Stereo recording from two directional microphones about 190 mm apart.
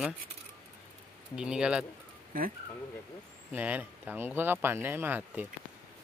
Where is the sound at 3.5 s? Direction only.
10° right (ahead or behind).